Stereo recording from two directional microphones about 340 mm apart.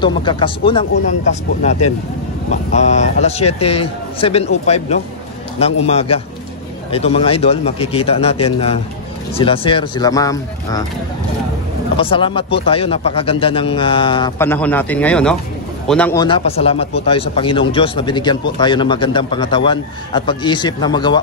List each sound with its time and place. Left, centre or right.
0.0 s a man's voice: centre
12.0 s a man's voice: centre